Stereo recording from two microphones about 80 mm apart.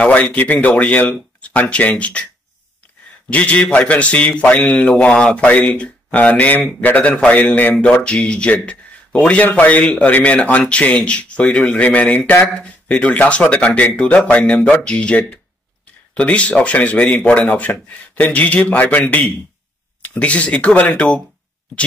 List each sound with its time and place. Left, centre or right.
0.0 s speech: centre
3.3 s speech: centre